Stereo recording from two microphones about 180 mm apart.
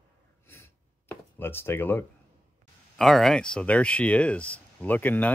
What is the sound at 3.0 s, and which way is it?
Speech, centre (ahead or behind).